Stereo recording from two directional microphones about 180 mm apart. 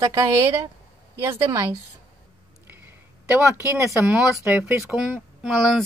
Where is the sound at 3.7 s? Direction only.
15° right (ahead or behind).